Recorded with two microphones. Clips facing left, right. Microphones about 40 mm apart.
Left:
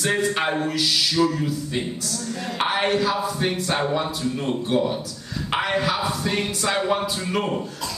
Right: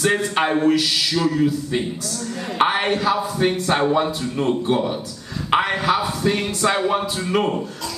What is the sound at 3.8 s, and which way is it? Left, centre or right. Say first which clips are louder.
A man's voice: right 4 dB; centre.